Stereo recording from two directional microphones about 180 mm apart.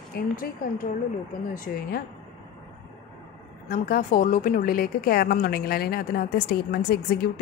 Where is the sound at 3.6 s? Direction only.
55° left (ahead or behind).